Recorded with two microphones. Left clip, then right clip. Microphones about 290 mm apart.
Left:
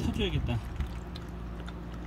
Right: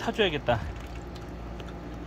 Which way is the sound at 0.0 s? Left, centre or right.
Centre.